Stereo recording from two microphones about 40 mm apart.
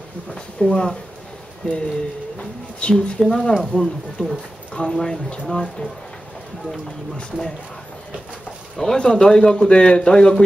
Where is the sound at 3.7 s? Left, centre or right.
Centre.